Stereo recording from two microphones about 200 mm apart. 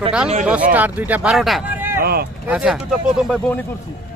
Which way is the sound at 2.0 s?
50° right (ahead or behind).